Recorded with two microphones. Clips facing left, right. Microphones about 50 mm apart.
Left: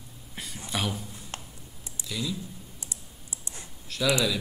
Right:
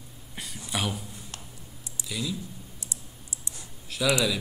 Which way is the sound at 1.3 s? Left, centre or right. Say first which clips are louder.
Left 7 dB; left.